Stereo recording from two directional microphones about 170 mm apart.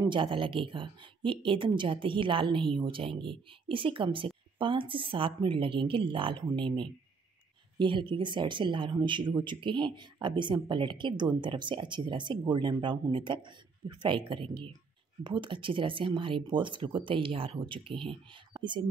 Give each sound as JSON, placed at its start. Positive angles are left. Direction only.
{"t": 0.0, "sound": "speech", "side_deg": -30}